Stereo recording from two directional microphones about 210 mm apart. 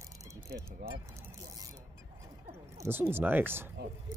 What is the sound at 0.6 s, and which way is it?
Vehicle, 15° right (ahead or behind).